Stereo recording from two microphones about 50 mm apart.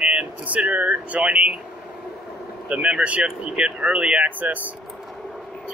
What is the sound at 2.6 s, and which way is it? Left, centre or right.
Speech, right.